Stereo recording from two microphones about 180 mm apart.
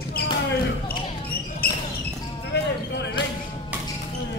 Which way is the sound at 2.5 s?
65° left (ahead or behind).